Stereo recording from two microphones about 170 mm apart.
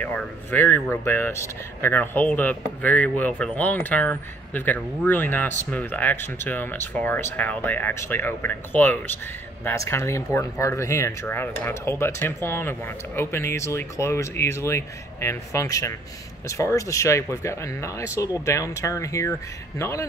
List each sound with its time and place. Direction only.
0.0 s speech: 10° left (ahead or behind)